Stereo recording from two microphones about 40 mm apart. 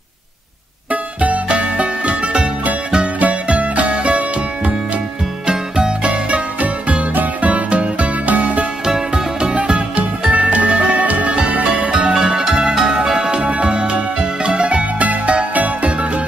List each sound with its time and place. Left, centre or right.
1.2 s music: right
5.5 s music: right
6.0 s music: right
8.8 s music: right
12.1 s music: centre; by 16.1 s right